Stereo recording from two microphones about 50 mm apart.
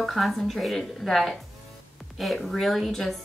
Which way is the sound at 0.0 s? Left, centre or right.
Centre.